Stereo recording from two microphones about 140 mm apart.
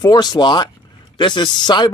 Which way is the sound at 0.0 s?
30° left (ahead or behind).